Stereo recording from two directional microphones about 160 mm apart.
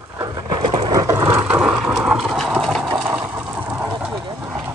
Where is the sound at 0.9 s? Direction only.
20° right (ahead or behind).